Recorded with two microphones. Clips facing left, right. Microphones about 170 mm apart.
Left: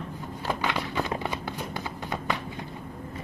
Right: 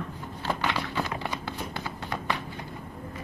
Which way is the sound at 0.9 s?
15° left (ahead or behind).